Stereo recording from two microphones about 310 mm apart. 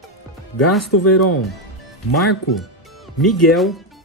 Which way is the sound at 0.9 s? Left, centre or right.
Left.